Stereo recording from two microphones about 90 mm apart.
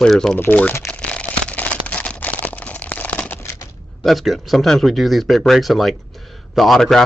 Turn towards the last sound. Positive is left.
turn(degrees=5)  # may be behind; listen again after turning